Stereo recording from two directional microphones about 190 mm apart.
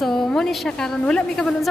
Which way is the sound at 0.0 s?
5° left (ahead or behind).